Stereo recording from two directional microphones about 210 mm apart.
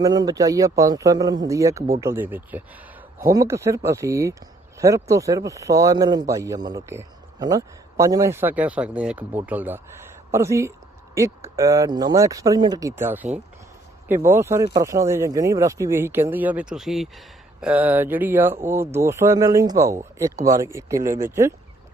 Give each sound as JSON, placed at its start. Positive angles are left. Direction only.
{"t": 0.0, "sound": "speech", "side_deg": -20}